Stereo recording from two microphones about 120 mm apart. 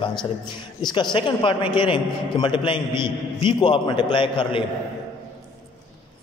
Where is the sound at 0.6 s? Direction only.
40° left (ahead or behind).